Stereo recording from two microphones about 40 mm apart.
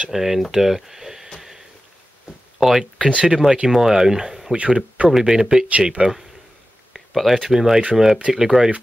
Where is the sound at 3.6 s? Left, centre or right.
Centre.